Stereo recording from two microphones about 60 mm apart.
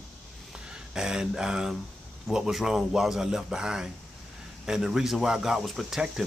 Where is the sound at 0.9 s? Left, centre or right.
Centre.